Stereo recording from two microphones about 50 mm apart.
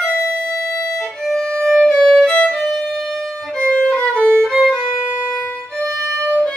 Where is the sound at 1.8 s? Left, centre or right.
Centre.